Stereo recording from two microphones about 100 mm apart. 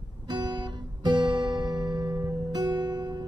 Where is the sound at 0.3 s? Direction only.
50° right (ahead or behind).